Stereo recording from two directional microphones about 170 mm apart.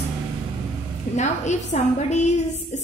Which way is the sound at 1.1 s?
45° left (ahead or behind).